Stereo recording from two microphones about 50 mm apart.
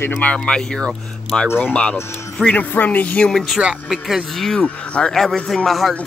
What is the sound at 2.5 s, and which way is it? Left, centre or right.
Speech, left.